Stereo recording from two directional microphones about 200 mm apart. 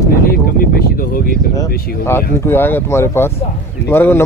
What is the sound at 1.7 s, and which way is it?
Speech, 50° left (ahead or behind).